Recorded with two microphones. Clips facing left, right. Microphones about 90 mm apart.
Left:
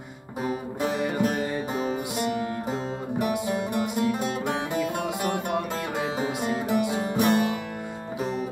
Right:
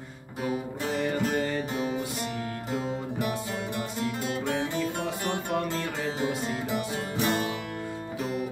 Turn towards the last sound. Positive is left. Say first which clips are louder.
# left 5 dB
turn(degrees=15)  # may be behind; listen again after turning